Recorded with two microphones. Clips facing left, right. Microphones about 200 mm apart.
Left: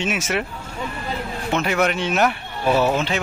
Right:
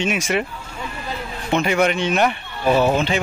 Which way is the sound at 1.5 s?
Centre (ahead or behind).